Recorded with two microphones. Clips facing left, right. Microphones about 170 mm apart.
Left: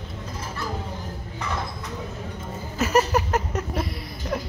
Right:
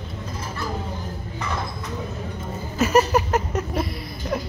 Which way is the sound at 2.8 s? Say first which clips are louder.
Right 3 dB; 15° right (ahead or behind).